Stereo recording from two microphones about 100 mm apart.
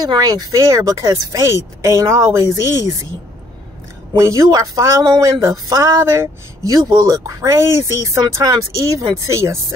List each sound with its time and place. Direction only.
0.0 s speech: 40° right (ahead or behind)
4.2 s speech: 30° right (ahead or behind)